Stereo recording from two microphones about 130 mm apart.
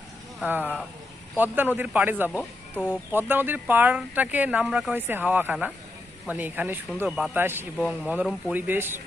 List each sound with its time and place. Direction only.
0.5 s speech: 10° right (ahead or behind)
7.1 s speech: centre (ahead or behind)
7.3 s speech: 15° right (ahead or behind)
7.7 s speech: 5° right (ahead or behind)